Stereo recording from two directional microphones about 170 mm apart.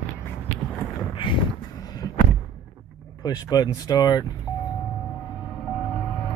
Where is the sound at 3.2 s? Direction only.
25° left (ahead or behind).